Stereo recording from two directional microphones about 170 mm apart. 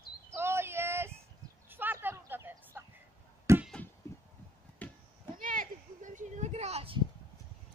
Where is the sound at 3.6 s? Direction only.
5° left (ahead or behind).